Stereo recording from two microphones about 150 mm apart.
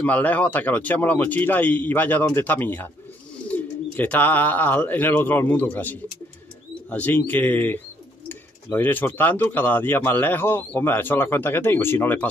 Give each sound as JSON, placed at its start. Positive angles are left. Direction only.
{"t": 0.0, "sound": "speech", "side_deg": 10}